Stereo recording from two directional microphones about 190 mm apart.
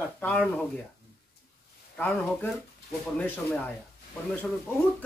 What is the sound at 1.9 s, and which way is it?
A man's voice, 10° left (ahead or behind).